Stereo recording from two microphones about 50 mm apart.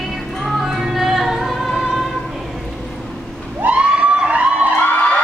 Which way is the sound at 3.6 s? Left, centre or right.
Right.